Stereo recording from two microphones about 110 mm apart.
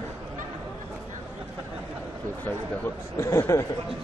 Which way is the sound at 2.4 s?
20° left (ahead or behind).